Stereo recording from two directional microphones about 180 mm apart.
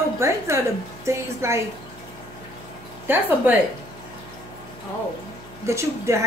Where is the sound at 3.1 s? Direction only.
10° right (ahead or behind).